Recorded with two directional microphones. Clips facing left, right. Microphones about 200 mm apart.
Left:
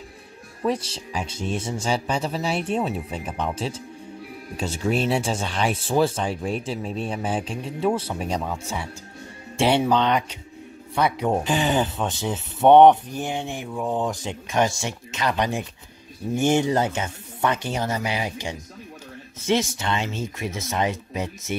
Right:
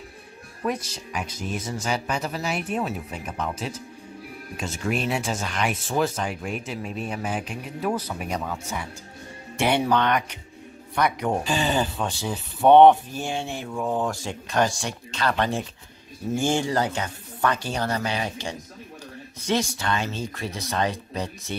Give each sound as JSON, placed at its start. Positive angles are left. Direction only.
{"t": 0.7, "sound": "speech", "side_deg": 30}
{"t": 9.6, "sound": "speech", "side_deg": 25}
{"t": 9.8, "sound": "speech", "side_deg": 10}
{"t": 11.0, "sound": "speech", "side_deg": 25}